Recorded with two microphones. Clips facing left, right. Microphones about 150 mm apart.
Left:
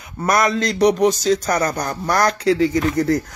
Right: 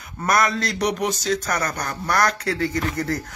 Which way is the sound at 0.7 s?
40° left (ahead or behind).